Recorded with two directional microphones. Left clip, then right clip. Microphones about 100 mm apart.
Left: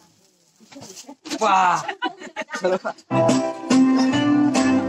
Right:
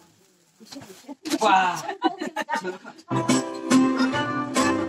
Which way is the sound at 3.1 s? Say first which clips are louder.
Left 5 dB; 30° left (ahead or behind).